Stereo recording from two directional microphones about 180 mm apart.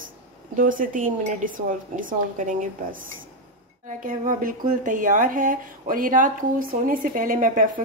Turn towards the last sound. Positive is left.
turn(degrees=-50)  # may be behind; listen again after turning